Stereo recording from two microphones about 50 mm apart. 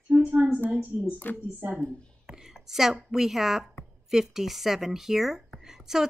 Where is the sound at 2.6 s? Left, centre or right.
Centre.